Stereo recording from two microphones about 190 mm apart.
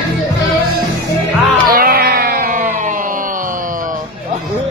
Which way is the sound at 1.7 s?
50° right (ahead or behind).